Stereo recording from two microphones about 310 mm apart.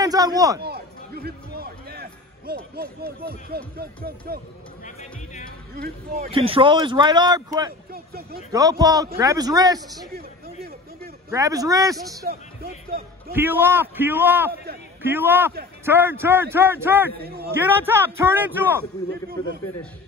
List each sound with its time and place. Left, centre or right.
0.0 s a man's voice: centre
0.6 s a man's voice: right
5.8 s speech: right
6.3 s a man's voice: centre
7.9 s speech: right
8.5 s a man's voice: centre
11.2 s a man's voice: centre
12.3 s speech: right
13.3 s a man's voice: centre